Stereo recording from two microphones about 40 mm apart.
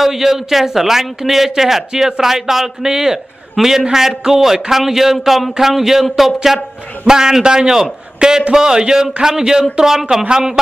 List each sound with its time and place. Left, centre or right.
0.0 s a man's voice: centre